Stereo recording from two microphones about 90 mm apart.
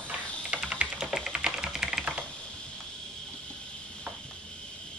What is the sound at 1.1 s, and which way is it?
Typing, centre (ahead or behind).